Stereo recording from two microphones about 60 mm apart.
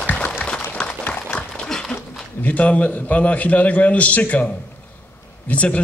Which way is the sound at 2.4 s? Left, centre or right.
Left.